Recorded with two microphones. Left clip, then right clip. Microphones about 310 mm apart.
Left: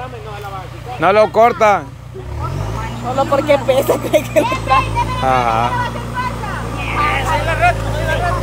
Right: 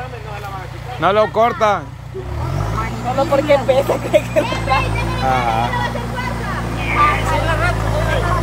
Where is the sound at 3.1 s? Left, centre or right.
Left.